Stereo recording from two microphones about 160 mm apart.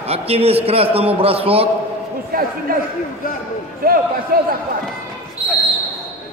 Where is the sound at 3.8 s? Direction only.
65° right (ahead or behind).